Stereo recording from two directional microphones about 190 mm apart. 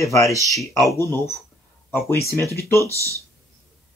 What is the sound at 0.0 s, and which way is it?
Speech, 15° left (ahead or behind).